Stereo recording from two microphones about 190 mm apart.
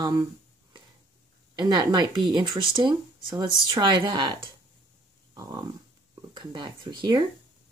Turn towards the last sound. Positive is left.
turn(degrees=-25)  # may be behind; listen again after turning